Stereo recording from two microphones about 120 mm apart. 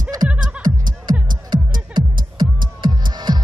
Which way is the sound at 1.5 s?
40° right (ahead or behind).